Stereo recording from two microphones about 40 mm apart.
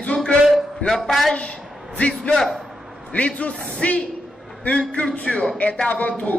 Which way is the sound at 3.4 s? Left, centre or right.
Left.